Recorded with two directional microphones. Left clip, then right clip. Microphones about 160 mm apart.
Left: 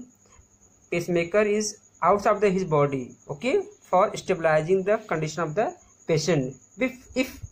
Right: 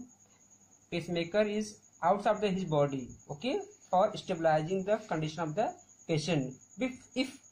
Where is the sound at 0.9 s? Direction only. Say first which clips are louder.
Left 10 dB; 35° left (ahead or behind).